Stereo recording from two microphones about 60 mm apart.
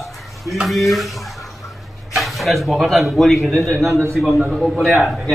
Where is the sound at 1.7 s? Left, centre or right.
Centre.